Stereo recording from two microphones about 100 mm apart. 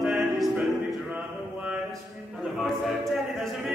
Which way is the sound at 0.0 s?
5° right (ahead or behind).